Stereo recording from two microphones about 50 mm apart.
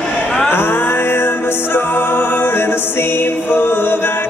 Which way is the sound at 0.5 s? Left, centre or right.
Left.